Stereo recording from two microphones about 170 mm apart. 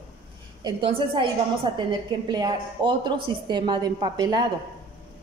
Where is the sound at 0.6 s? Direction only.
30° right (ahead or behind).